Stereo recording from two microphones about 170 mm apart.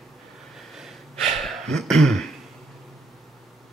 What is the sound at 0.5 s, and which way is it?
Snort, centre (ahead or behind).